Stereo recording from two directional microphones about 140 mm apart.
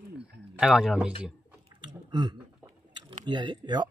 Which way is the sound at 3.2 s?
30° right (ahead or behind).